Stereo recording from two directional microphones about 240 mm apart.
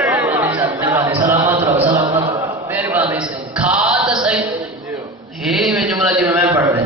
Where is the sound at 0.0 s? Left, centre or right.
Centre.